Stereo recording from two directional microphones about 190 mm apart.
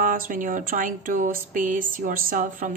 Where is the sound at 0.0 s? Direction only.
45° right (ahead or behind).